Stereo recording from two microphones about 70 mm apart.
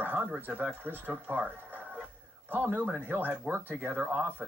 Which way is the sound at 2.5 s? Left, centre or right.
Right.